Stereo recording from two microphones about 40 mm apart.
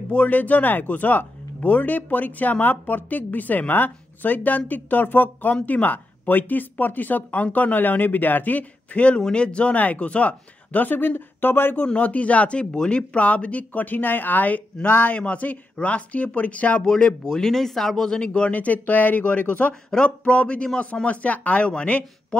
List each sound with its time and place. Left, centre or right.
0.1 s speech: left
11.8 s speech: left
15.1 s speech: left
17.2 s speech: centre
18.5 s speech: left
19.9 s a man's voice: left